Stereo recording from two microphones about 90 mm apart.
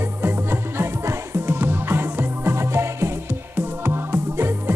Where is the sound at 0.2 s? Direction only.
25° right (ahead or behind).